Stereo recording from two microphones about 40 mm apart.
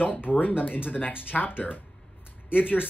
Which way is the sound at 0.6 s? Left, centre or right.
Left.